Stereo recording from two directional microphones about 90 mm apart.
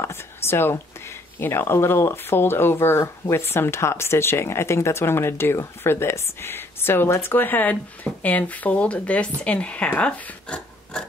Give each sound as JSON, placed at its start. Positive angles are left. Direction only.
{"t": 0.0, "sound": "speech", "side_deg": 25}